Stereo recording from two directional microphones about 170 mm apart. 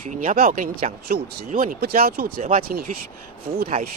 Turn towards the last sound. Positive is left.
turn(degrees=-60)  # may be behind; listen again after turning